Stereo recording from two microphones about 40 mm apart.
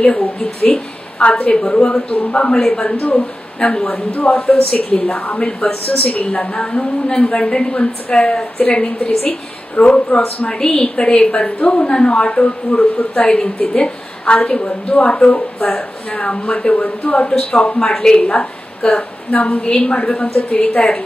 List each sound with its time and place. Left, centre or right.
0.0 s a woman's voice: left
3.0 s a woman's voice: left
3.5 s speech: left
3.9 s a woman's voice: left
17.7 s a woman's voice: centre
19.3 s a woman's voice: left
19.6 s a woman's voice: left